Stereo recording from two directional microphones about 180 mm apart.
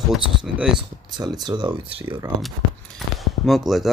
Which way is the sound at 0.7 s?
25° right (ahead or behind).